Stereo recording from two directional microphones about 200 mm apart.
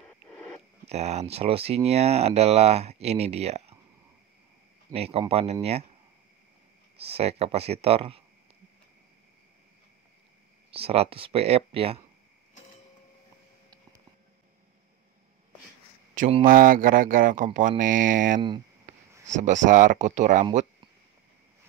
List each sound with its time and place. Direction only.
0.8 s speech: 35° right (ahead or behind)
4.9 s speech: 30° right (ahead or behind)
7.0 s speech: 30° right (ahead or behind)
10.7 s speech: 30° right (ahead or behind)
16.2 s speech: 30° right (ahead or behind)
16.4 s speech: 45° right (ahead or behind)